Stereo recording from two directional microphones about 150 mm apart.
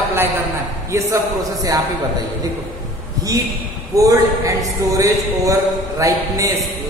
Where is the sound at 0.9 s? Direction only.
25° right (ahead or behind).